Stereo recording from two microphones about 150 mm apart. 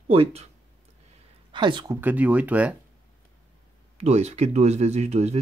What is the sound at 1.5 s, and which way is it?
Speech, 30° right (ahead or behind).